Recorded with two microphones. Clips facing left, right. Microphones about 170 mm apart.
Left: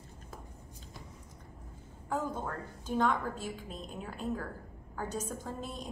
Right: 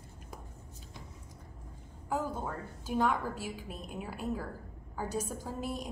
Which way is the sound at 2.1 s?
10° right (ahead or behind).